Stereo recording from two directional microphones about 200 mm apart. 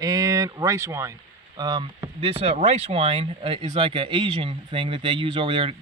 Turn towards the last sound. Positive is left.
turn(degrees=-25)  # may be behind; listen again after turning